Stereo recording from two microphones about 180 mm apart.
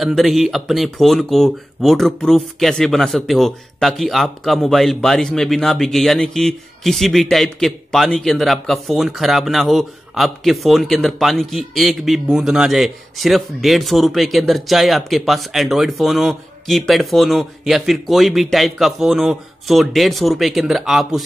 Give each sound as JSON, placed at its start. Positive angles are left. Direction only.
{"t": 0.0, "sound": "speech", "side_deg": 0}